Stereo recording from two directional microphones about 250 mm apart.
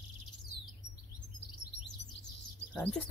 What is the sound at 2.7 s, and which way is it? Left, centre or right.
Speech, centre.